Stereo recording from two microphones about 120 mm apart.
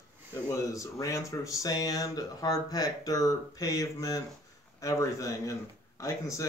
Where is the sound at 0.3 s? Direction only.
25° left (ahead or behind).